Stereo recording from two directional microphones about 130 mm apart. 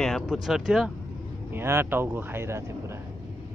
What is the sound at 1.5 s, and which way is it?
Speech, 20° right (ahead or behind).